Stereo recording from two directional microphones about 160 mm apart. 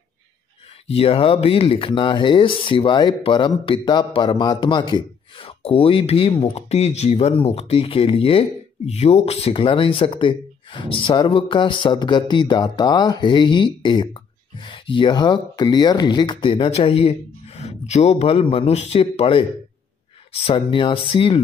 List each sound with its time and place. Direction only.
0.9 s speech: 35° left (ahead or behind)